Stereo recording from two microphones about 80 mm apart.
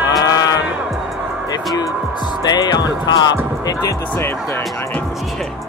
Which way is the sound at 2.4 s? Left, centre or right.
Left.